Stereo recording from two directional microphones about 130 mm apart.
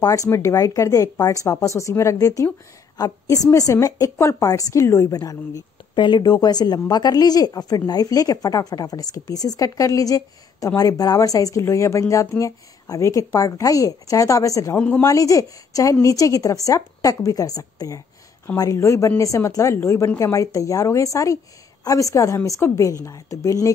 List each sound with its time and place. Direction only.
0.0 s a woman's voice: 25° left (ahead or behind)
14.8 s a woman's voice: 10° left (ahead or behind)
15.0 s a woman's voice: 25° left (ahead or behind)